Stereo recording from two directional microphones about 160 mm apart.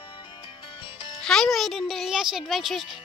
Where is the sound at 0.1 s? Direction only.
30° left (ahead or behind).